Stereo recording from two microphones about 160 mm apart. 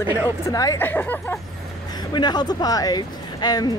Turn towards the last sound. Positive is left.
turn(degrees=25)  # may be behind; listen again after turning